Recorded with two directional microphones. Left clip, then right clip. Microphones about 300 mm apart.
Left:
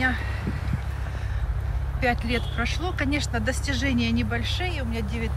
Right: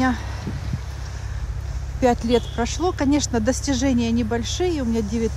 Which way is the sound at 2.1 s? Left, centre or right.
Centre.